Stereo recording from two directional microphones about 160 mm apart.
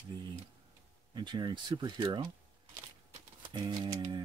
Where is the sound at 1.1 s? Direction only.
30° right (ahead or behind).